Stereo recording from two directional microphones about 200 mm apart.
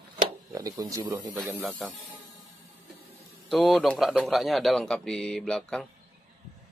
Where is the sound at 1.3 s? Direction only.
5° right (ahead or behind).